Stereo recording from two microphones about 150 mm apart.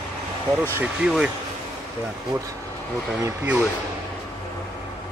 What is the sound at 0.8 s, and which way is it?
Speech, 5° right (ahead or behind).